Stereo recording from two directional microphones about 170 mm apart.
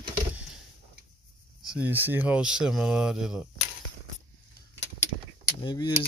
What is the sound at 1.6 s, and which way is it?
Speech, 10° right (ahead or behind).